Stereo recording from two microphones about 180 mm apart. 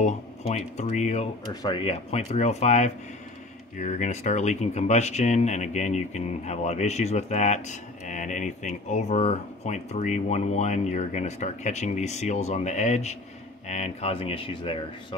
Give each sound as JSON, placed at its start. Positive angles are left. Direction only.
{"t": 0.0, "sound": "a sound", "side_deg": 40}
{"t": 0.7, "sound": "speech", "side_deg": 40}
{"t": 1.5, "sound": "speech", "side_deg": 25}